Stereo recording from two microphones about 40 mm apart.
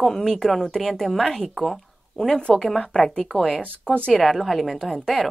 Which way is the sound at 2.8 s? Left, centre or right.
Left.